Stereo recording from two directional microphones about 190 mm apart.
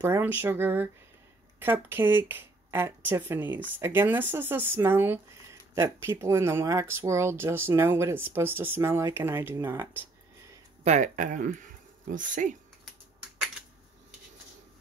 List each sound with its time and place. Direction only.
0.0 s speech: 10° right (ahead or behind)
10.8 s speech: 40° right (ahead or behind)